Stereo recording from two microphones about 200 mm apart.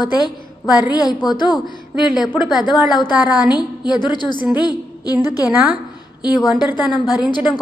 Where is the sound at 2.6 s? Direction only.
20° left (ahead or behind).